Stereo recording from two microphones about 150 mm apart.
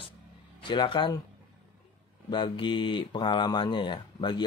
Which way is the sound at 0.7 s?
35° left (ahead or behind).